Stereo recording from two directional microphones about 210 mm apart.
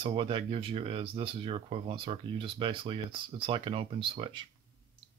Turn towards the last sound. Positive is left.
turn(degrees=-25)  # may be behind; listen again after turning